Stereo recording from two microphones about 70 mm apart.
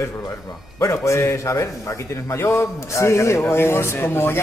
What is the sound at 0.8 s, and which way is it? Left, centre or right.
A man's voice, left.